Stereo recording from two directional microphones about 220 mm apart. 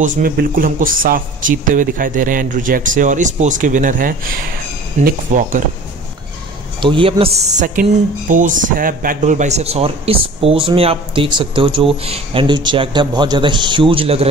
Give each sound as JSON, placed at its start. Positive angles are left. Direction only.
{"t": 0.0, "sound": "speech", "side_deg": -40}
{"t": 6.8, "sound": "a man's voice", "side_deg": -25}